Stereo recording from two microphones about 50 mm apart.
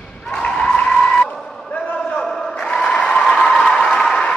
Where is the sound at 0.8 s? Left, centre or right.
Centre.